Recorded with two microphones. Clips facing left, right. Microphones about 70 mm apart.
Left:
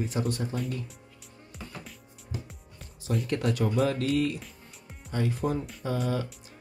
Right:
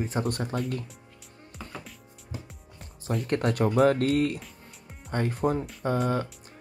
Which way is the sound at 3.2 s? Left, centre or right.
Right.